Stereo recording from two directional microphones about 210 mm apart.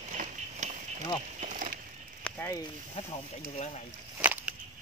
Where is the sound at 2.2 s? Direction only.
10° left (ahead or behind).